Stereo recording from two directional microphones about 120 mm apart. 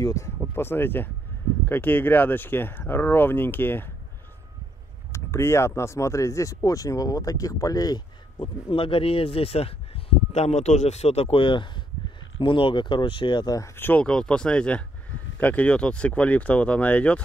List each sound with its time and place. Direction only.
0.0 s speech: 25° left (ahead or behind)
5.1 s speech: 20° left (ahead or behind)
13.7 s speech: 15° left (ahead or behind)